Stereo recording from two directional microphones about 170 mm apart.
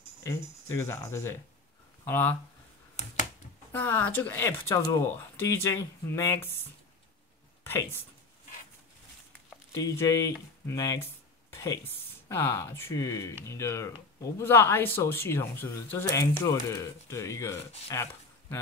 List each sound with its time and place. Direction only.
0.2 s speech: 15° left (ahead or behind)
3.7 s speech: 10° left (ahead or behind)
7.6 s speech: 15° left (ahead or behind)
9.8 s speech: 20° left (ahead or behind)